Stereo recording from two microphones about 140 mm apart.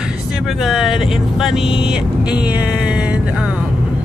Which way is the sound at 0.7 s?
Centre (ahead or behind).